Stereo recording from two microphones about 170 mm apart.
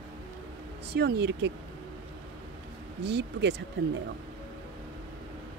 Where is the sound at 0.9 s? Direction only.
80° right.